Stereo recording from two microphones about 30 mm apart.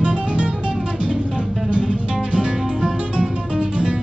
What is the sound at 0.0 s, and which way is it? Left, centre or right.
Music, right.